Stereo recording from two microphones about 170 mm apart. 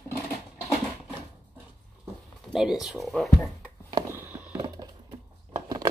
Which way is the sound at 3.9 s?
15° right (ahead or behind).